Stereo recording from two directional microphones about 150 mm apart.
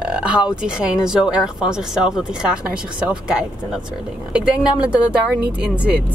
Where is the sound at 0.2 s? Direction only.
5° right (ahead or behind).